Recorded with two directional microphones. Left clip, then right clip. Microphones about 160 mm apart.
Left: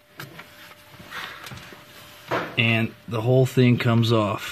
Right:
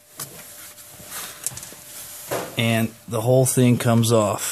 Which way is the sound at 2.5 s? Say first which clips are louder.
Even; 30° right (ahead or behind).